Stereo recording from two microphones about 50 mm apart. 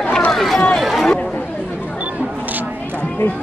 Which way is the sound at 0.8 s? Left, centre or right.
Centre.